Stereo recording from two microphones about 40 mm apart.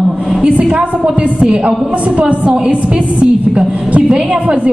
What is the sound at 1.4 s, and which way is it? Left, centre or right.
A man's voice, right.